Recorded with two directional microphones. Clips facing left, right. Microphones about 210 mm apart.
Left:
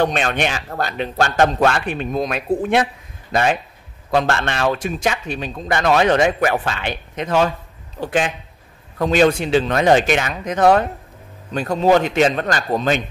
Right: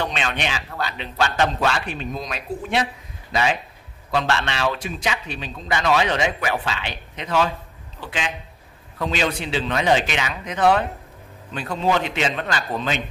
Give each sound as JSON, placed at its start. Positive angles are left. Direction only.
{"t": 0.0, "sound": "a man's voice", "side_deg": 50}